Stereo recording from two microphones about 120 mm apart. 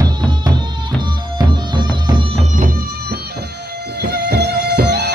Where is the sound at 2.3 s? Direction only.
90° right.